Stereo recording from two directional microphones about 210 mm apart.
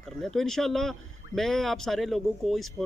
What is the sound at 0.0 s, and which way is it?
Speech, centre (ahead or behind).